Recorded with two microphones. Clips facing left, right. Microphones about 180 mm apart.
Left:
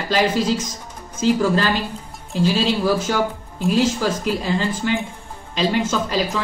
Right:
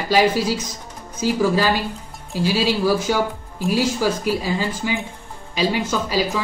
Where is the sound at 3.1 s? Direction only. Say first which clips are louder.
Even; 10° right (ahead or behind).